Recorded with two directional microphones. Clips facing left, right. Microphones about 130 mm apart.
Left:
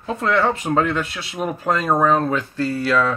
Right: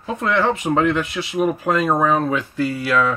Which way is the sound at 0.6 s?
10° right (ahead or behind).